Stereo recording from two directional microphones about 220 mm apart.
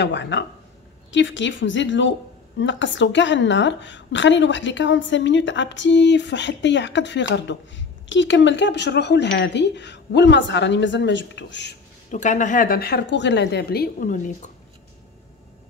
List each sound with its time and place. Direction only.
0.0 s a woman's voice: 50° left (ahead or behind)
12.1 s a woman's voice: 35° left (ahead or behind)